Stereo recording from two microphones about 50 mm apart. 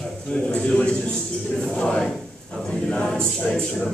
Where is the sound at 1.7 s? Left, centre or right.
Left.